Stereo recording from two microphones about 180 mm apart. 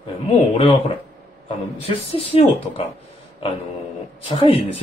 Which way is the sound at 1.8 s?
35° left (ahead or behind).